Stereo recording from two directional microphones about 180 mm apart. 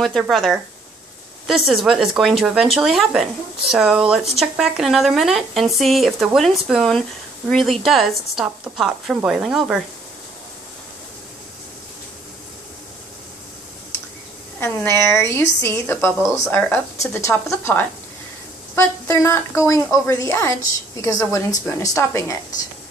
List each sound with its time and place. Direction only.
0.0 s speech: centre (ahead or behind)
1.7 s speech: centre (ahead or behind)
14.6 s a woman's voice: 15° left (ahead or behind)